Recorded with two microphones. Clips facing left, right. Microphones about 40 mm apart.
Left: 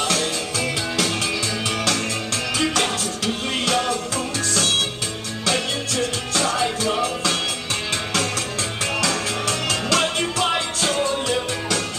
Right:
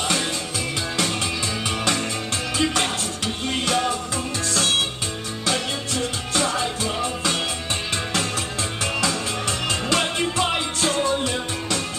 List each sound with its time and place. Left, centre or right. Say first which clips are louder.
3.6 s music: left 1 dB; centre
4.6 s music: even; right
6.3 s music: even; centre
9.0 s music: left 2 dB; right